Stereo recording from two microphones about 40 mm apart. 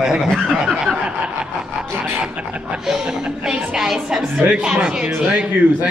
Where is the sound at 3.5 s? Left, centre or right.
Centre.